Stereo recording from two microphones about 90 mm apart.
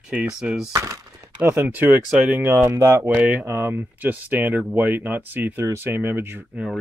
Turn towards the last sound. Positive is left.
turn(degrees=-25)  # may be behind; listen again after turning